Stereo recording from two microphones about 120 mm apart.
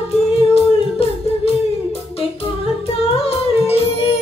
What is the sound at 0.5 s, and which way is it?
Music, 55° left (ahead or behind).